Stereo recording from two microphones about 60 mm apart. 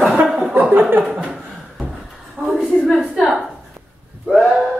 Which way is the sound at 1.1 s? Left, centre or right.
Centre.